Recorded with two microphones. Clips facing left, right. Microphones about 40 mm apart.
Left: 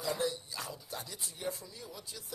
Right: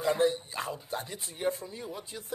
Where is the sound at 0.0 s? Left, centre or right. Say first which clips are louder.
Right 8 dB; right.